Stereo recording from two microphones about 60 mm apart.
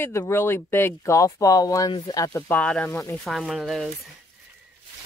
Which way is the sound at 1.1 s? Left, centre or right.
Left.